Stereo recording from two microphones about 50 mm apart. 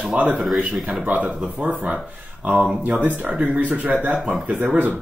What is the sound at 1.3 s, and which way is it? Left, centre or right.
Speech, right.